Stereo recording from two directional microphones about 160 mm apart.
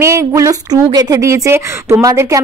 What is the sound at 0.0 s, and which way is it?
A woman's voice, 20° right (ahead or behind).